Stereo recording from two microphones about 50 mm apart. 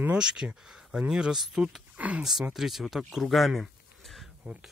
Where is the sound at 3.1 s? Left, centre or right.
Centre.